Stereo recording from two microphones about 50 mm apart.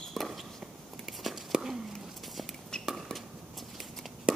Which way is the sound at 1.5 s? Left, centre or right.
Centre.